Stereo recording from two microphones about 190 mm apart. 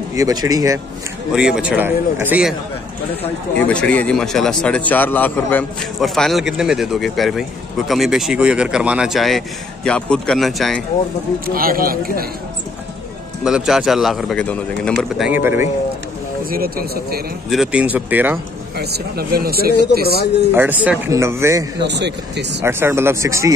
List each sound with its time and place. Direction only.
0.1 s speech: 20° right (ahead or behind)
1.3 s a man's voice: 5° right (ahead or behind)
3.5 s speech: 5° left (ahead or behind)
11.4 s speech: 50° right (ahead or behind)
13.4 s speech: 5° right (ahead or behind)
15.2 s a man's voice: 10° right (ahead or behind)
16.4 s speech: 50° right (ahead or behind)
17.5 s a man's voice: 5° right (ahead or behind)
18.8 s speech: 55° right (ahead or behind)
20.5 s a man's voice: 10° right (ahead or behind)
21.8 s speech: 65° right (ahead or behind)
22.6 s a man's voice: 10° right (ahead or behind)